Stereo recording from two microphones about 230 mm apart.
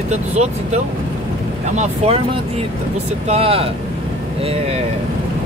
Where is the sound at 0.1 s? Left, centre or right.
Right.